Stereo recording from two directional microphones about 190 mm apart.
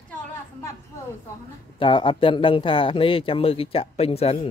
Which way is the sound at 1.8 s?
25° left (ahead or behind).